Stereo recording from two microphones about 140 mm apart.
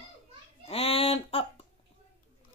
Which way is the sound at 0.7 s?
45° left (ahead or behind).